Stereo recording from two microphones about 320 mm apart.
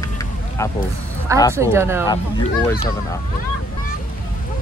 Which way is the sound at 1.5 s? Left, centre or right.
Centre.